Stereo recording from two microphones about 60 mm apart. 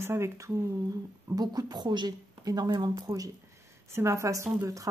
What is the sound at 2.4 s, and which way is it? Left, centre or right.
Speech, right.